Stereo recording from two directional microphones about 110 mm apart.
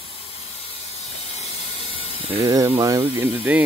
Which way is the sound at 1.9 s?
55° right (ahead or behind).